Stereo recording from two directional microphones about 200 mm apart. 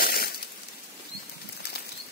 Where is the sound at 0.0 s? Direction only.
50° left (ahead or behind).